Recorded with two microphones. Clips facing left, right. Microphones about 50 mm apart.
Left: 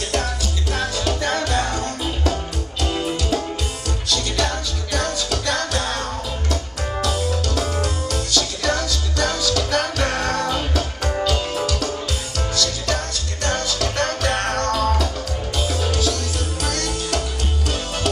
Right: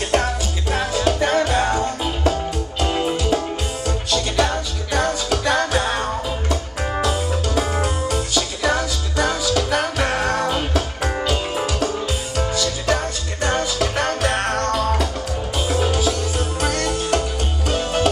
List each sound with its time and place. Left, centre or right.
0.1 s music: right